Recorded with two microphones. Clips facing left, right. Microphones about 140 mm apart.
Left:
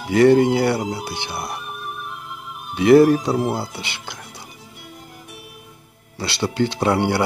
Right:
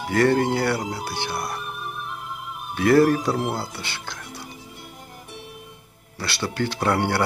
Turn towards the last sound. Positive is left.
turn(degrees=15)  # may be behind; listen again after turning